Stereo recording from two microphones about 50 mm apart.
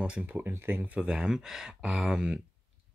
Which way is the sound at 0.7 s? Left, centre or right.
Right.